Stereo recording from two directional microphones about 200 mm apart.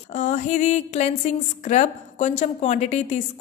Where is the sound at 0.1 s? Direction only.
35° left (ahead or behind).